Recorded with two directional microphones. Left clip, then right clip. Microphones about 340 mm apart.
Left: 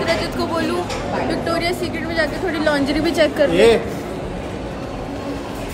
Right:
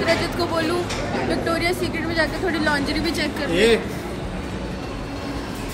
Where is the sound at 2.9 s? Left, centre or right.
Left.